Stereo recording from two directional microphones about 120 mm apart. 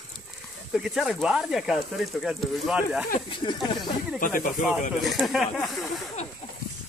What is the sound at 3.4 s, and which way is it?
Speech, 45° left (ahead or behind).